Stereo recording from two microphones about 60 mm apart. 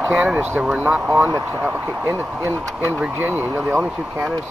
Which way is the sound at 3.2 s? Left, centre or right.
Right.